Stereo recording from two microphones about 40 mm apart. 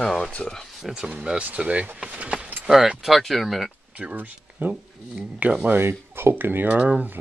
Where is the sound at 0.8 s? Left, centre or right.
Centre.